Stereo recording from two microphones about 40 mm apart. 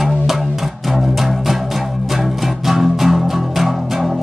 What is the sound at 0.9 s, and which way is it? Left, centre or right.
Music, centre.